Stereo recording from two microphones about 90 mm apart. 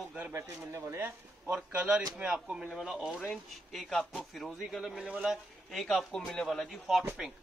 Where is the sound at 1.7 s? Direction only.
10° right (ahead or behind).